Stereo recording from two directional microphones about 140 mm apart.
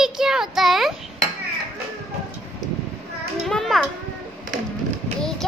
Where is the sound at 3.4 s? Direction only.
Centre (ahead or behind).